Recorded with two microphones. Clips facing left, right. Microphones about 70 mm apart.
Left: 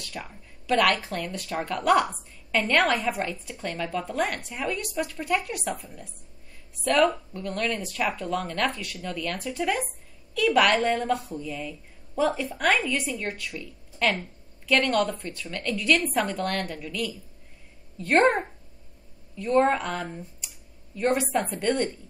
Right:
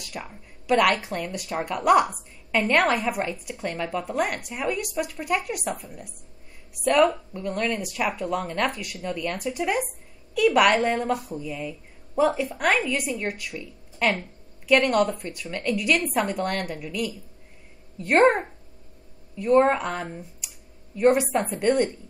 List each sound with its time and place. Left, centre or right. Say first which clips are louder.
0.0 s a woman's voice: right 1 dB; centre
7.1 s a woman's voice: right 2 dB; centre
20.1 s a sound: right 1 dB; centre
21.3 s a woman's voice: right 3 dB; centre